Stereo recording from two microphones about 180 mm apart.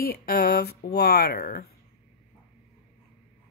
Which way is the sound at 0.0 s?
60° left (ahead or behind).